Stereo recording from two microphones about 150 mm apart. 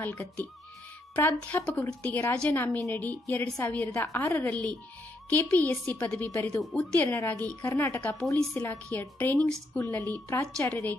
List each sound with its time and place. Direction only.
0.0 s a woman's voice: 10° left (ahead or behind)